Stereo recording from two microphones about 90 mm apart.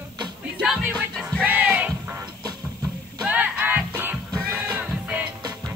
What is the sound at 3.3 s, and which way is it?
Music, 15° right (ahead or behind).